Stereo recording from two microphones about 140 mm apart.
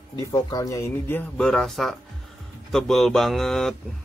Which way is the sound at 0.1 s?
25° left (ahead or behind).